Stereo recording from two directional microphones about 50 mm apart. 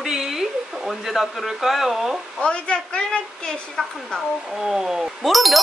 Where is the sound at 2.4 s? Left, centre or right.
Left.